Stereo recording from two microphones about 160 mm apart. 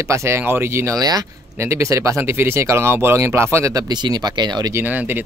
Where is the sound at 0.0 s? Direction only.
20° right (ahead or behind).